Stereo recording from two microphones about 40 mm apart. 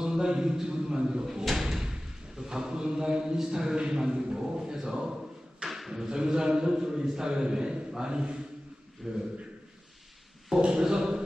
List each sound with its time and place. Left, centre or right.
0.0 s a man's voice: centre
1.4 s speech: centre; by 8.4 s right
9.0 s speech: centre
10.6 s a man's voice: centre